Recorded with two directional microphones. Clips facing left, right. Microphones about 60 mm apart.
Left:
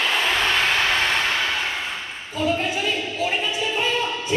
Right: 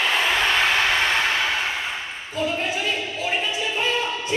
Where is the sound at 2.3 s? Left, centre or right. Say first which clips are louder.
Left 2 dB; centre.